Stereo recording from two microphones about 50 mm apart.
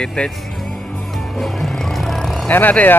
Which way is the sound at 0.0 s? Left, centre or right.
Centre.